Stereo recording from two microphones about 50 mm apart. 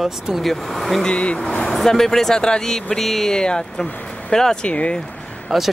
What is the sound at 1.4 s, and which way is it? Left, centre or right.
Speech, centre.